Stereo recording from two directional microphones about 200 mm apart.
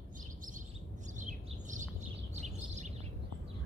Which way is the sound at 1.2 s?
40° right (ahead or behind).